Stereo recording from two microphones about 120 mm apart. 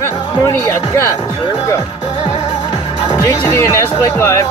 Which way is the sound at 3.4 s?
25° left (ahead or behind).